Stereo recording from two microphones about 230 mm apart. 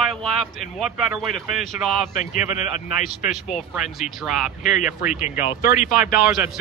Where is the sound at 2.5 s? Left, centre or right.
Left.